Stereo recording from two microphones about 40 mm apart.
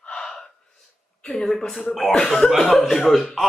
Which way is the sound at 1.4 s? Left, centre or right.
Centre.